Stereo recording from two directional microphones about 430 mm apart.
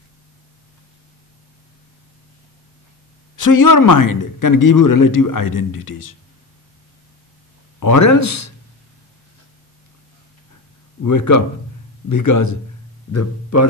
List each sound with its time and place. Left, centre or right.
3.3 s a man's voice: left
7.8 s speech: left
11.0 s speech: left